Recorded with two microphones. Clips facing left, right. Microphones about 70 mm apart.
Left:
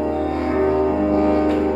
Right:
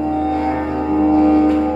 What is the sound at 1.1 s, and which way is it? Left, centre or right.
Music, left.